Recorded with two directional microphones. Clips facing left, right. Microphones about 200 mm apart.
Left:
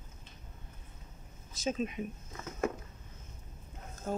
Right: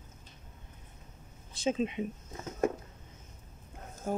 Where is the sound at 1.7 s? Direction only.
25° right (ahead or behind).